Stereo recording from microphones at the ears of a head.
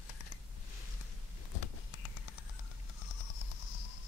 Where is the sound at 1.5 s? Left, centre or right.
Left.